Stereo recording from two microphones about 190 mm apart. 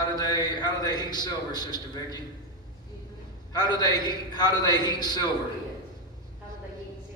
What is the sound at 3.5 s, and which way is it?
A man's voice, 20° left (ahead or behind).